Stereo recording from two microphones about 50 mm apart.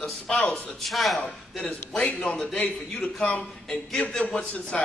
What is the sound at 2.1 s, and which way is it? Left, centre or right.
Speech, centre.